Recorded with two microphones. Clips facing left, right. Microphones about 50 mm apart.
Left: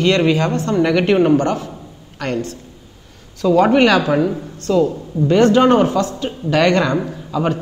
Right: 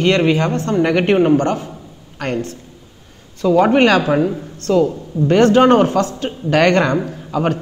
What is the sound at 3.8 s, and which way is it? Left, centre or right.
Speech, right.